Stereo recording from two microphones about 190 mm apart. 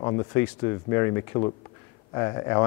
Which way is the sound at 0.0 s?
25° left (ahead or behind).